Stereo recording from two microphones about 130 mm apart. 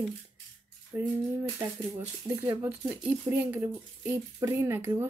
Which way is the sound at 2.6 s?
10° right (ahead or behind).